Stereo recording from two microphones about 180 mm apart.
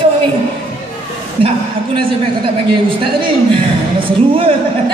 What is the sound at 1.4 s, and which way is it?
A man's voice, 30° right (ahead or behind).